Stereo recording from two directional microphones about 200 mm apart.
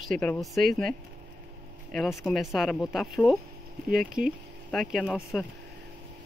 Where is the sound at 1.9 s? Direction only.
Centre (ahead or behind).